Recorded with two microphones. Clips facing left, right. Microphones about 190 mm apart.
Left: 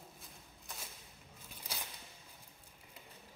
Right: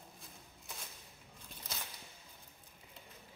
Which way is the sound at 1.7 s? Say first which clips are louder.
Left 1 dB; 10° left (ahead or behind).